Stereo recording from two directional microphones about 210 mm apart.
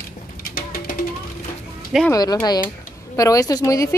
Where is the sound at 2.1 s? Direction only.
20° left (ahead or behind).